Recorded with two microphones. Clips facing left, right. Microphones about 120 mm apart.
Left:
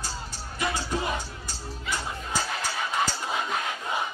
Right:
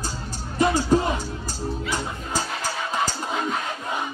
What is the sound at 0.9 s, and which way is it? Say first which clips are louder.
Speech: right 12 dB; 40° right (ahead or behind).